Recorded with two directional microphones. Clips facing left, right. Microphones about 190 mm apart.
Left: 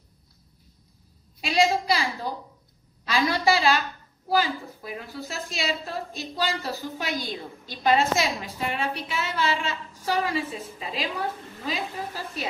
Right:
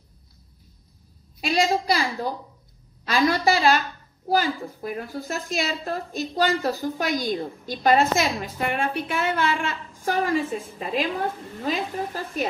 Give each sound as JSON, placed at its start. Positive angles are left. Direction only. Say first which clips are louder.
{"t": 1.4, "sound": "a woman's voice", "louder": "even", "side_deg": -45}
{"t": 3.1, "sound": "a woman's voice", "louder": "right 2 dB", "side_deg": -45}